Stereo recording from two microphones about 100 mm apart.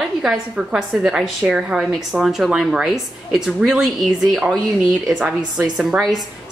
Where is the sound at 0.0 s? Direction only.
5° right (ahead or behind).